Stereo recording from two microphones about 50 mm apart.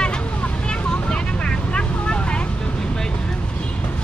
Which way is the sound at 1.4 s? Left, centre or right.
Centre.